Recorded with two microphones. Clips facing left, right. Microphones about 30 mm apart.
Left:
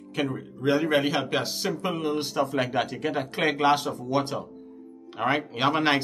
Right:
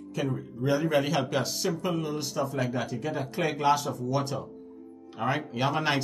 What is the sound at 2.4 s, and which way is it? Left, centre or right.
Speech, left.